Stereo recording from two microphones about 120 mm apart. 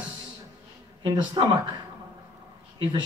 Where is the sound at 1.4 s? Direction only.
40° right (ahead or behind).